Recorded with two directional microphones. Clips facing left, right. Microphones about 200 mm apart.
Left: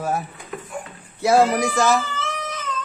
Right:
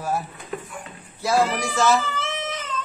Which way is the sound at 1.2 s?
25° left (ahead or behind).